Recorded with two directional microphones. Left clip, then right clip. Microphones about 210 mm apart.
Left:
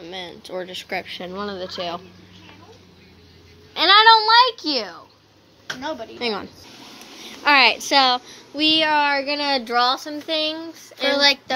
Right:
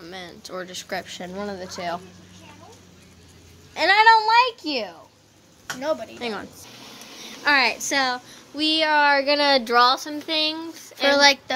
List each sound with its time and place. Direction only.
0.0 s speech: 10° right (ahead or behind)
3.7 s a child's voice: 5° right (ahead or behind)
6.1 s a woman's voice: 10° left (ahead or behind)
7.4 s a woman's voice: 10° left (ahead or behind)
8.5 s speech: 5° right (ahead or behind)
9.2 s speech: 40° right (ahead or behind)
9.9 s speech: 5° left (ahead or behind)
11.1 s speech: 35° right (ahead or behind)